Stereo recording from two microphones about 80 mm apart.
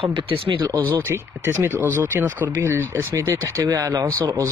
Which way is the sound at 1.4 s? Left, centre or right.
Right.